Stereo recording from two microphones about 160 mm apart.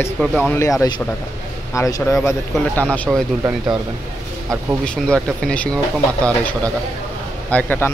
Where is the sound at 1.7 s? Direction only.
20° left (ahead or behind).